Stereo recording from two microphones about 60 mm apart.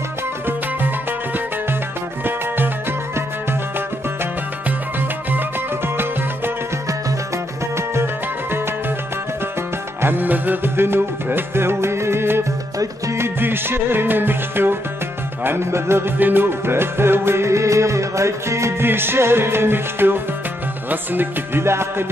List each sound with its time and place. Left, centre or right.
2.2 s music: right
7.7 s music: right
10.0 s music: right
16.2 s music: right
21.6 s music: right